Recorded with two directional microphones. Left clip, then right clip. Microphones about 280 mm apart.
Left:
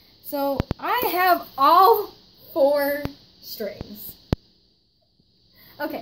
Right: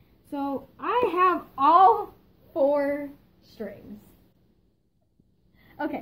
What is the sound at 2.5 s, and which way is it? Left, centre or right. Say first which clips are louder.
Speech: left 4 dB; centre.